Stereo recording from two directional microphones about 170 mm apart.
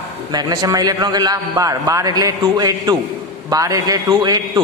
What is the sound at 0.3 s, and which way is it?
A man's voice, 25° right (ahead or behind).